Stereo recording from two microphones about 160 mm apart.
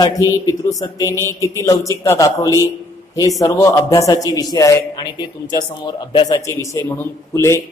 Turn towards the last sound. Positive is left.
turn(degrees=15)  # may be behind; listen again after turning